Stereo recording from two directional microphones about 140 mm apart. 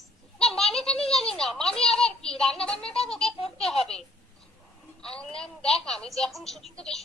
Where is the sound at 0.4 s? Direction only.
5° left (ahead or behind).